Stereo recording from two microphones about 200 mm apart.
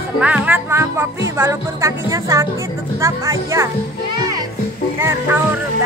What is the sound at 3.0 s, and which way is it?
Speech, 15° right (ahead or behind).